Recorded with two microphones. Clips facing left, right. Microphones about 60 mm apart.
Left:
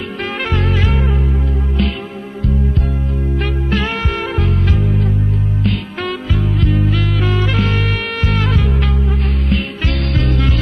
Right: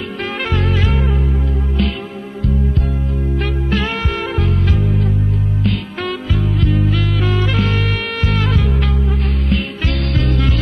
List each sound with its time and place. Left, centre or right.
0.2 s music: left
3.3 s music: left